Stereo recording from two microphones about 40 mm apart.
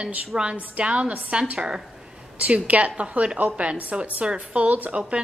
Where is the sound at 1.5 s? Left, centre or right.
Centre.